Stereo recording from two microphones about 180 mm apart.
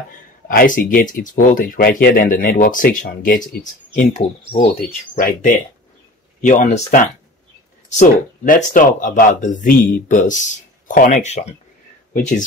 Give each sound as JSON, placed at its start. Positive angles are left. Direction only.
{"t": 0.1, "sound": "speech", "side_deg": 50}
{"t": 4.5, "sound": "speech", "side_deg": 45}